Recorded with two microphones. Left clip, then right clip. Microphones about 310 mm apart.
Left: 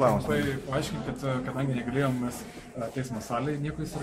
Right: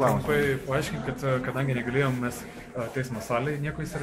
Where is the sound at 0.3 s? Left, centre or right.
Centre.